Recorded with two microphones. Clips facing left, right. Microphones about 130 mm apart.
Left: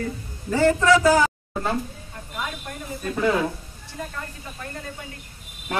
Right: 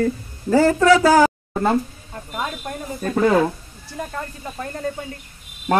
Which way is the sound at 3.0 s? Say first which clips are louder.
Right 6 dB; 50° right (ahead or behind).